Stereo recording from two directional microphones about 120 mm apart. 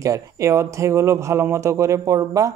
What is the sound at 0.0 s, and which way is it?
Speech, 25° right (ahead or behind).